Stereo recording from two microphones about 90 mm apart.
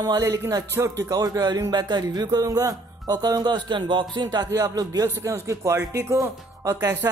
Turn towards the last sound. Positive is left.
turn(degrees=-40)  # may be behind; listen again after turning